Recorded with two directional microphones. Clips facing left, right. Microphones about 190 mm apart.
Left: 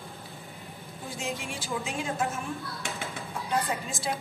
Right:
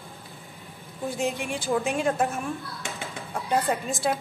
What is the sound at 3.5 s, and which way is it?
Speech, 55° right (ahead or behind).